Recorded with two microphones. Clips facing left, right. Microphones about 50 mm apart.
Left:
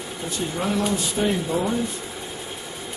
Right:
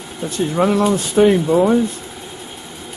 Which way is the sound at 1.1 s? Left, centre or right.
Right.